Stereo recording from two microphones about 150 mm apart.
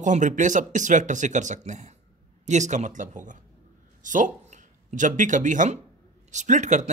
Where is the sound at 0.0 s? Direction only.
55° right (ahead or behind).